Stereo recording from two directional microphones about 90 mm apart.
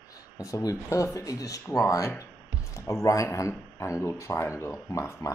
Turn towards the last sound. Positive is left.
turn(degrees=35)  # may be behind; listen again after turning